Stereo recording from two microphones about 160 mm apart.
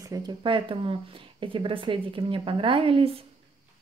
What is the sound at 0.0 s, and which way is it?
Speech, 25° right (ahead or behind).